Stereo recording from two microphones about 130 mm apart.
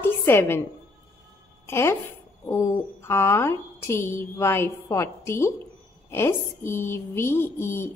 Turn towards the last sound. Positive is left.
turn(degrees=20)  # may be behind; listen again after turning